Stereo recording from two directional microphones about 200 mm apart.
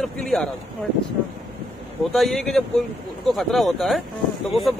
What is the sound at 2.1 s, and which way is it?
Speech, centre (ahead or behind).